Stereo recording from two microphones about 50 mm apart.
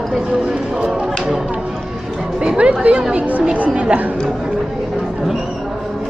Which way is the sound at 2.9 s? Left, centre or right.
Right.